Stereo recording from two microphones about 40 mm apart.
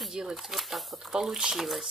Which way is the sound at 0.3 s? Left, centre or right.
Centre.